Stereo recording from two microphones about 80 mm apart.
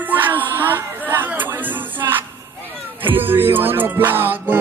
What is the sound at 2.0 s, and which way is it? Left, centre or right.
Music, right.